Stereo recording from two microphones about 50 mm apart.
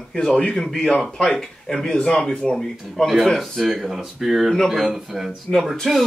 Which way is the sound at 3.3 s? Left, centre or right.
Centre.